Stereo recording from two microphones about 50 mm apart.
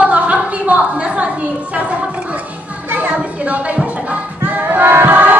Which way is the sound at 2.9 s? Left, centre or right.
Right.